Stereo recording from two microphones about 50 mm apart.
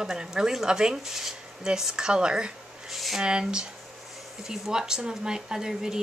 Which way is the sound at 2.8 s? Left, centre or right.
Centre.